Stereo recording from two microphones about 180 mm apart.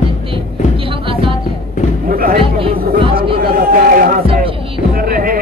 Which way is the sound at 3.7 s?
50° right (ahead or behind).